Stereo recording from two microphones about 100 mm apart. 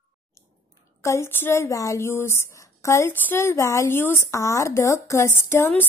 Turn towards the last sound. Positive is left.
turn(degrees=20)  # may be behind; listen again after turning